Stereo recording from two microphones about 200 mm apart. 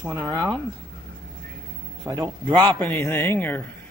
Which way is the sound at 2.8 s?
10° left (ahead or behind).